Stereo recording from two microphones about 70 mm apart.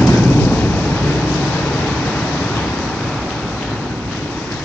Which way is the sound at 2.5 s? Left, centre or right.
Centre.